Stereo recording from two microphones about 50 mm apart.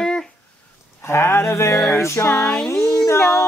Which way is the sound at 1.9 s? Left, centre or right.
Left.